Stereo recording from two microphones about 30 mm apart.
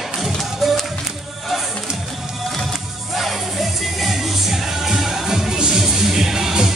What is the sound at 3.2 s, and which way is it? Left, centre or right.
Music, centre.